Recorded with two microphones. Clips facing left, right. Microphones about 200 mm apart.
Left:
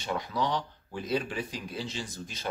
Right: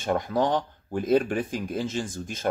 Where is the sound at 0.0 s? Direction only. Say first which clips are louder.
Right 7 dB; 50° right (ahead or behind).